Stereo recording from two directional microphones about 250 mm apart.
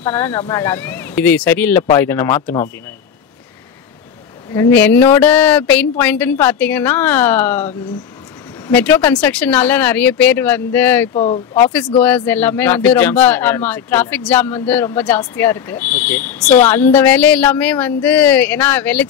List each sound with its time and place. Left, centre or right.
0.0 s speech: centre
4.6 s speech: centre
11.1 s speech: left
12.3 s speech: centre